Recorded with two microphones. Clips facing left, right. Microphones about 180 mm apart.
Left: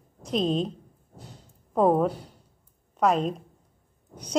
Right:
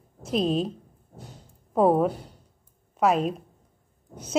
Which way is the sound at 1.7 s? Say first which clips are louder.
Right 1 dB; 5° right (ahead or behind).